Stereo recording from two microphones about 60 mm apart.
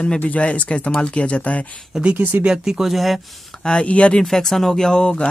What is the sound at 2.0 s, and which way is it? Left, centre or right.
Speech, right.